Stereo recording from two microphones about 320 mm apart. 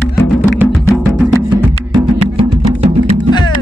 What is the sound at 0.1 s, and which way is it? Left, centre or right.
Music, centre.